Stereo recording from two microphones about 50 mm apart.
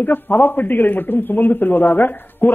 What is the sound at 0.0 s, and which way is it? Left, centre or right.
A man's voice, left.